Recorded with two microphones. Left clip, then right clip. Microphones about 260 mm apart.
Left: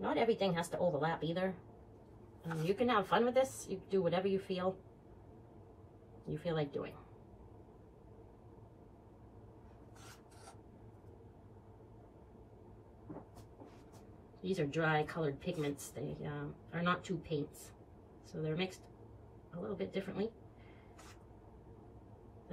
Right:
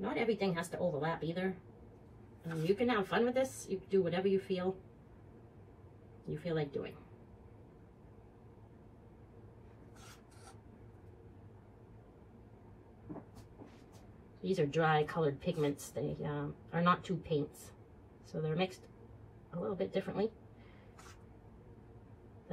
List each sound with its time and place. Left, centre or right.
0.0 s a woman's voice: centre
6.2 s a woman's voice: centre
14.4 s a woman's voice: centre